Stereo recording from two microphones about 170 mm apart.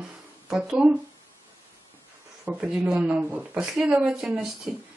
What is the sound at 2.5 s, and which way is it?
Speech, 5° right (ahead or behind).